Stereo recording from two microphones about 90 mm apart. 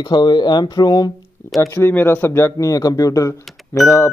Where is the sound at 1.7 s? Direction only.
25° left (ahead or behind).